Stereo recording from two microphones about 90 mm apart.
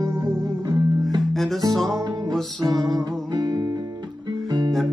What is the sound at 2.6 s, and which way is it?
Music, 45° right (ahead or behind).